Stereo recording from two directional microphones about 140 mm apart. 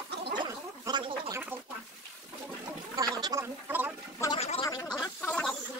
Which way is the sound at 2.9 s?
25° right (ahead or behind).